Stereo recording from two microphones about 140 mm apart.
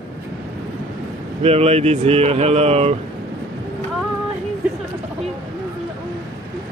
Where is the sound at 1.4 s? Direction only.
45° right (ahead or behind).